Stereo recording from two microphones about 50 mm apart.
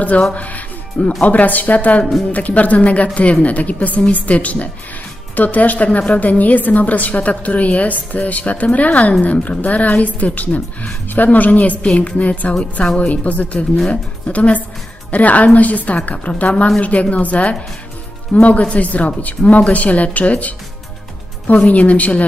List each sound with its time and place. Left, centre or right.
0.3 s a woman's voice: left
21.5 s a woman's voice: left